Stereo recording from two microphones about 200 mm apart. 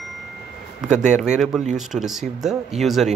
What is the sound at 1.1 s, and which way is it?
Speech, 5° right (ahead or behind).